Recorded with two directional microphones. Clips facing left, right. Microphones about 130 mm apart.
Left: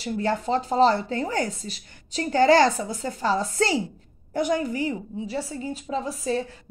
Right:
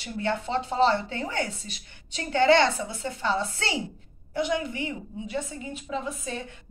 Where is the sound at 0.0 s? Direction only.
35° left (ahead or behind).